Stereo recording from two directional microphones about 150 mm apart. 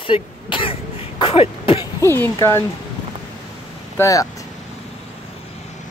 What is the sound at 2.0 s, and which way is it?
Speech, 15° left (ahead or behind).